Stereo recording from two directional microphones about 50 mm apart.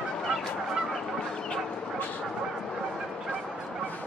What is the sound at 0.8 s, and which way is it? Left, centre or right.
Fowl, centre.